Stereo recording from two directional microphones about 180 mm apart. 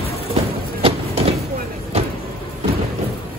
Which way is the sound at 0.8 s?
30° right (ahead or behind).